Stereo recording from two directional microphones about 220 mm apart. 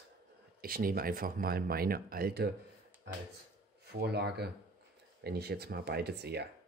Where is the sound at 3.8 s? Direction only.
50° right (ahead or behind).